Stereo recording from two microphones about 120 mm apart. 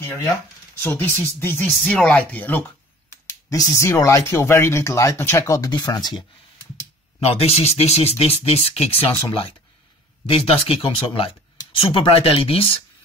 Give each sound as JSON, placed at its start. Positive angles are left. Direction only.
{"t": 0.8, "sound": "speech", "side_deg": 20}
{"t": 3.1, "sound": "speech", "side_deg": 30}
{"t": 7.2, "sound": "speech", "side_deg": 55}
{"t": 10.2, "sound": "speech", "side_deg": 50}